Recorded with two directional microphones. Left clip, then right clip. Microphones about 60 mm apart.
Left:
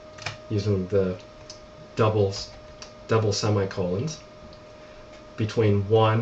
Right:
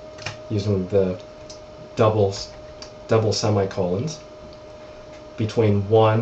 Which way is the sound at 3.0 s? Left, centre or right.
Left.